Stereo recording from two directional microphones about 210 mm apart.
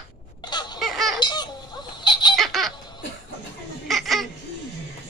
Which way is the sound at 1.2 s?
20° left (ahead or behind).